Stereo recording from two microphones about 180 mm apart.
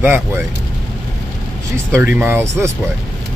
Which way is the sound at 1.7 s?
15° right (ahead or behind).